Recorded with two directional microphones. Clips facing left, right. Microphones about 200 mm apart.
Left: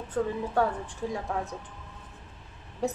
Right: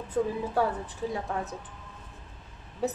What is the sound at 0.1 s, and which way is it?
A woman's voice, 5° right (ahead or behind).